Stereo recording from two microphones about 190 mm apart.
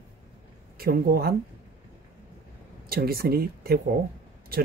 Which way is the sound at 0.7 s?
50° right (ahead or behind).